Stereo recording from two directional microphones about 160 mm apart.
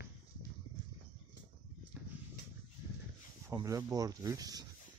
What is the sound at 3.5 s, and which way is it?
Speech, 20° right (ahead or behind).